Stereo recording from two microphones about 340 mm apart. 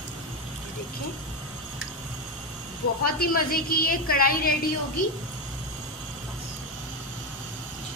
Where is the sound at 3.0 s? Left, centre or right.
Left.